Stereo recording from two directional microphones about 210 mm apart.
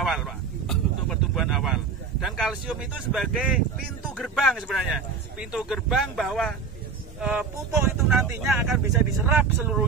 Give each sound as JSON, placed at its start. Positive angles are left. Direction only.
{"t": 0.0, "sound": "vehicle", "side_deg": 0}
{"t": 1.3, "sound": "speech", "side_deg": 0}